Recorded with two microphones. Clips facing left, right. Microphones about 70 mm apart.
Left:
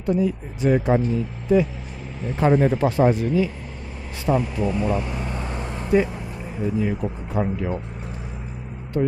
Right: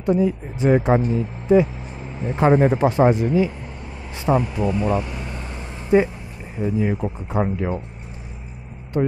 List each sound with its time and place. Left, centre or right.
0.0 s speech: right
5.0 s vehicle: left
6.6 s speech: right
9.0 s speech: right